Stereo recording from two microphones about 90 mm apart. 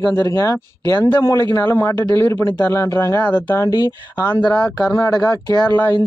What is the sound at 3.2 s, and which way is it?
Speech, 20° left (ahead or behind).